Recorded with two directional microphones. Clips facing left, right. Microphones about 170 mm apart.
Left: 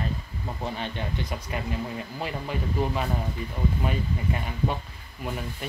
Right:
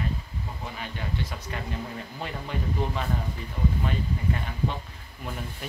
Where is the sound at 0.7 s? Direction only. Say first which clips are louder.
Left 4 dB; 30° left (ahead or behind).